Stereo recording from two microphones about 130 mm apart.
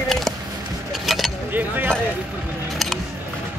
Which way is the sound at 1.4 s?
15° right (ahead or behind).